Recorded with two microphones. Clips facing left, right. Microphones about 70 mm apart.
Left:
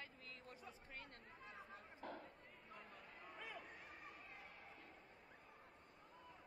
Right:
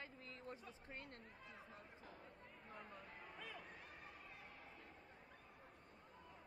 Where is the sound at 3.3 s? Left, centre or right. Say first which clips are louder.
Left 2 dB; centre.